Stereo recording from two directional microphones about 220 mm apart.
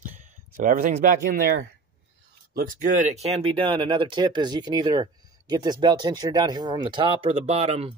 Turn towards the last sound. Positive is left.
turn(degrees=-25)  # may be behind; listen again after turning